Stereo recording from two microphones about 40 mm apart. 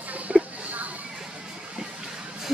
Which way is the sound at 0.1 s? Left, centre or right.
Right.